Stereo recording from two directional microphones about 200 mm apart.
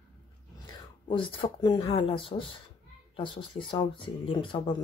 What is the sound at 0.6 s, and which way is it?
Speech, 25° left (ahead or behind).